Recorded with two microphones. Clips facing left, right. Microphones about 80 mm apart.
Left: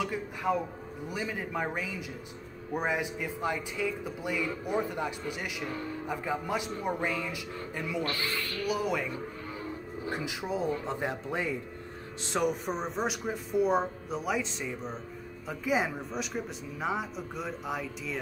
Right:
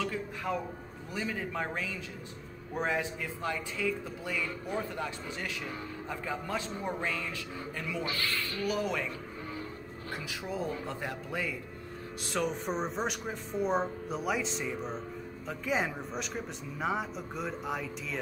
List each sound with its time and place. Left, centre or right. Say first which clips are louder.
0.0 s music: left 3 dB; centre
1.1 s a man's voice: even; centre
10.0 s speech: left 4 dB; centre
12.4 s speech: left 2 dB; centre